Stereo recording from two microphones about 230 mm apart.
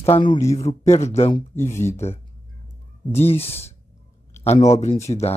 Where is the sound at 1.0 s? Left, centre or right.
Left.